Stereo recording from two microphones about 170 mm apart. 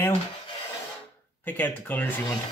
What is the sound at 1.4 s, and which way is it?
Speech, 10° left (ahead or behind).